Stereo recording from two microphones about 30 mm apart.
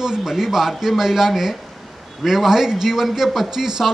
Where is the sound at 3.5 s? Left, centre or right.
Centre.